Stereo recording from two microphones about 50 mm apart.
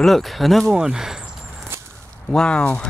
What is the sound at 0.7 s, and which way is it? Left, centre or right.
Speech, centre.